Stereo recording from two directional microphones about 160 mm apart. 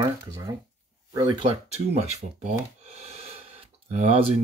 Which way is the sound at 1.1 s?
25° right (ahead or behind).